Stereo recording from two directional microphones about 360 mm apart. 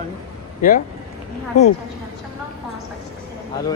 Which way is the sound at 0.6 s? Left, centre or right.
Left.